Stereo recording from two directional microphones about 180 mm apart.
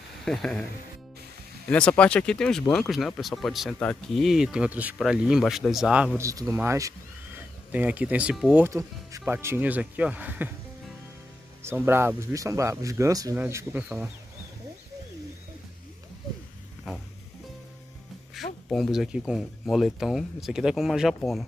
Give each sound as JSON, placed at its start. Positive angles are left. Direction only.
{"t": 0.2, "sound": "speech", "side_deg": 5}
{"t": 1.7, "sound": "speech", "side_deg": 5}
{"t": 6.1, "sound": "speech", "side_deg": -15}
{"t": 8.6, "sound": "speech", "side_deg": -15}
{"t": 11.6, "sound": "speech", "side_deg": -15}
{"t": 18.3, "sound": "speech", "side_deg": 0}